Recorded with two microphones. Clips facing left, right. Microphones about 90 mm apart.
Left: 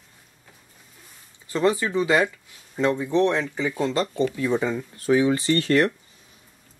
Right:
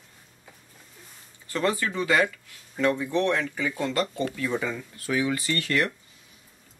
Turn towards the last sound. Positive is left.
turn(degrees=35)  # may be behind; listen again after turning